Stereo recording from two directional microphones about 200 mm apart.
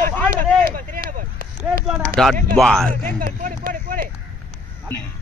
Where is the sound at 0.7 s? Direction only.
45° right (ahead or behind).